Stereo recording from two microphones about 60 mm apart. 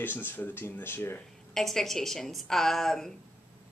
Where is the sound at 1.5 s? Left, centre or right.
Centre.